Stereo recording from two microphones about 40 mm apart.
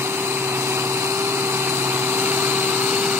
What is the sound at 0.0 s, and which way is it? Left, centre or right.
Light engine, right.